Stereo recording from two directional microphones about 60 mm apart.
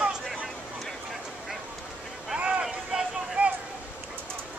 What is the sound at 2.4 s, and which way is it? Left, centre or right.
Vehicle, centre.